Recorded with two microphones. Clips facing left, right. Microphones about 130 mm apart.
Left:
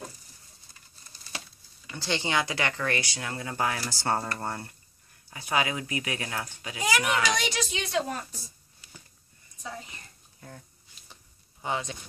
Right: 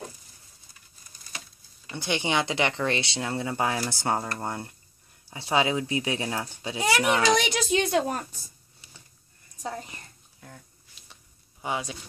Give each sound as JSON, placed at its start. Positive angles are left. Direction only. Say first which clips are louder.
{"t": 2.0, "sound": "speech", "louder": "right 2 dB", "side_deg": -15}
{"t": 5.3, "sound": "a child's voice", "louder": "right 4 dB", "side_deg": -25}
{"t": 7.7, "sound": "a woman's voice", "louder": "right 9 dB", "side_deg": -50}
{"t": 8.8, "sound": "a sound", "louder": "left 3 dB", "side_deg": -25}
{"t": 9.6, "sound": "a woman's voice", "louder": "right 5 dB", "side_deg": -45}
{"t": 10.4, "sound": "a sound", "louder": "left 1 dB", "side_deg": 0}
{"t": 11.6, "sound": "speech", "louder": "right 1 dB", "side_deg": -10}